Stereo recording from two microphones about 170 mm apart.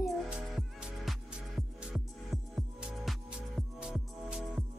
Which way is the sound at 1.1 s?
Centre (ahead or behind).